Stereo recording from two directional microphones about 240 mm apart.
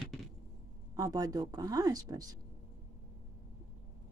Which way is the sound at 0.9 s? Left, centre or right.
Centre.